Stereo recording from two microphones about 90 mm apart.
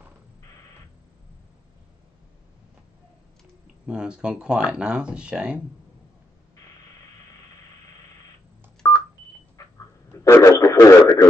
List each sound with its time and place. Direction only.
3.8 s speech: 10° right (ahead or behind)
8.8 s telephone dialing: 35° left (ahead or behind)
9.6 s a sound: 35° left (ahead or behind)
10.1 s radio: 30° left (ahead or behind)